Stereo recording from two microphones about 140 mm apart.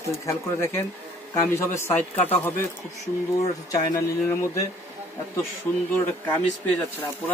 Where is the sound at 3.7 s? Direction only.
25° left (ahead or behind).